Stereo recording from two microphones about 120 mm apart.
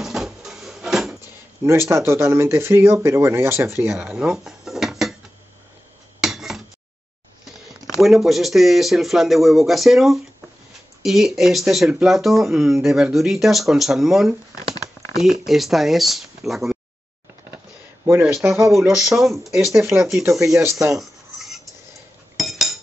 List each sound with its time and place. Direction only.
0.0 s a sound: 5° right (ahead or behind)
1.6 s speech: 20° right (ahead or behind)
3.9 s dishes: 5° right (ahead or behind)
6.2 s a sound: 5° right (ahead or behind)
7.9 s speech: centre (ahead or behind)
18.0 s speech: 20° right (ahead or behind)
18.9 s speech: 5° right (ahead or behind)
19.8 s speech: 20° right (ahead or behind)
21.0 s dishes: centre (ahead or behind)
22.4 s cutlery: centre (ahead or behind)